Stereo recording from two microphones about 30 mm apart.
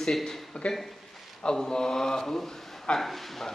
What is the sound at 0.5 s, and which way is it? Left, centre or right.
Speech, left.